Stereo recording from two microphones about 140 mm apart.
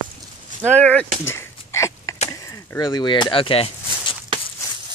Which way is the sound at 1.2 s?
20° left (ahead or behind).